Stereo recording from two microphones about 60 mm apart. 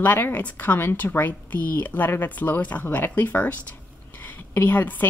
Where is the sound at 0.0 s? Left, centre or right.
Left.